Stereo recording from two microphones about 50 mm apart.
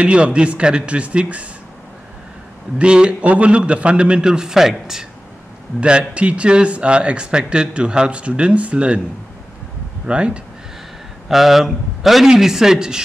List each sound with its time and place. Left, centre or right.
0.0 s speech: right
2.8 s speech: centre
5.8 s speech: right
10.0 s speech: centre
11.2 s a man's voice: centre